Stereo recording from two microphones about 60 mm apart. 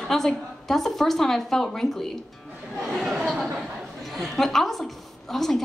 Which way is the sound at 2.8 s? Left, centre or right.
Centre.